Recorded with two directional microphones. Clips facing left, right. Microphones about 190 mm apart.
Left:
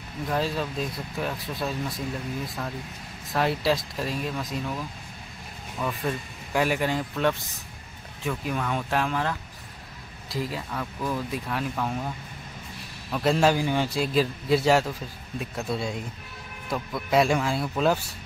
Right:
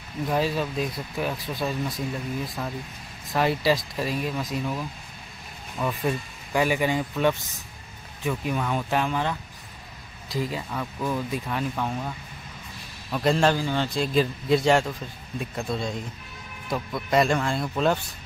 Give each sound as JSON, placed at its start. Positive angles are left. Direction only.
{"t": 0.3, "sound": "a man's voice", "side_deg": -5}
{"t": 13.1, "sound": "a man's voice", "side_deg": 0}